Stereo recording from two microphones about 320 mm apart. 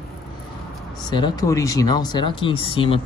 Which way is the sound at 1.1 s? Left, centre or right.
Centre.